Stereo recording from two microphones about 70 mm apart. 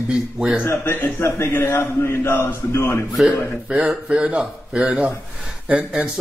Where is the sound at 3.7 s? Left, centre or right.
Centre.